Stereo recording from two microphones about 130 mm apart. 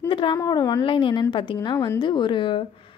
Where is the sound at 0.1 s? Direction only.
40° left (ahead or behind).